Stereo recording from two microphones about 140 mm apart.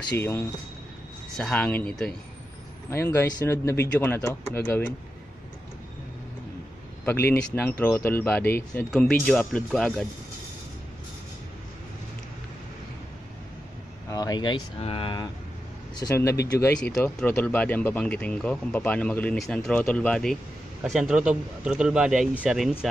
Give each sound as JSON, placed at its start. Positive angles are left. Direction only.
{"t": 0.2, "sound": "speech", "side_deg": 20}
{"t": 1.3, "sound": "speech", "side_deg": 10}
{"t": 2.9, "sound": "speech", "side_deg": 15}
{"t": 7.1, "sound": "speech", "side_deg": 15}
{"t": 8.9, "sound": "a man's voice", "side_deg": 0}
{"t": 14.0, "sound": "a sound", "side_deg": 25}
{"t": 14.8, "sound": "speech", "side_deg": 40}
{"t": 16.2, "sound": "a man's voice", "side_deg": 15}